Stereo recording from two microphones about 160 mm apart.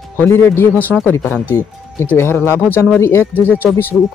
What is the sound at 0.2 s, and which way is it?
Speech, 10° left (ahead or behind).